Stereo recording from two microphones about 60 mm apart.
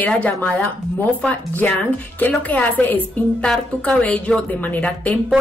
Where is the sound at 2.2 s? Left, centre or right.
Left.